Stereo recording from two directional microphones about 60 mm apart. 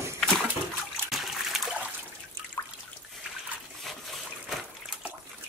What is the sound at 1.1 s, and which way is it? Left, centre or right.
Water, centre.